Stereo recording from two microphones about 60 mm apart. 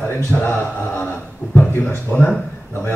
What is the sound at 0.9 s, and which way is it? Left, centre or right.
Speech, left.